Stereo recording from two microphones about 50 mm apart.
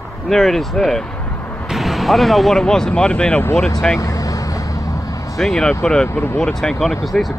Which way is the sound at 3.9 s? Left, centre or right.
Left.